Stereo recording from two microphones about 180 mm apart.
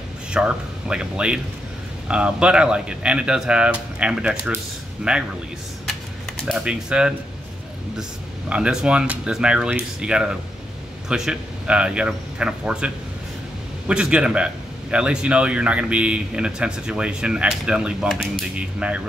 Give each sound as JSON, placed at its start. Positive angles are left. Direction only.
{"t": 0.3, "sound": "speech", "side_deg": -5}
{"t": 6.4, "sound": "speech", "side_deg": -5}
{"t": 8.5, "sound": "speech", "side_deg": -5}